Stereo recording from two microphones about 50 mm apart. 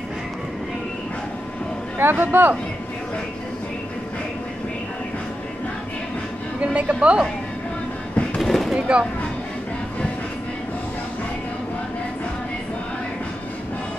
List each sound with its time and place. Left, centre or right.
2.0 s speech: right
6.6 s a woman's voice: right
8.4 s a sound: centre
8.7 s a woman's voice: right